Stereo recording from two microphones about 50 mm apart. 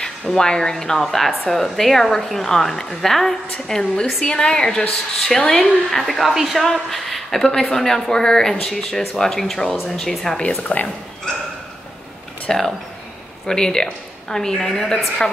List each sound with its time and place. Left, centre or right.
0.0 s a woman's voice: centre
10.7 s speech: left
12.4 s speech: centre